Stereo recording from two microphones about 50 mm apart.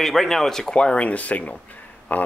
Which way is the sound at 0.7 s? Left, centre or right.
Centre.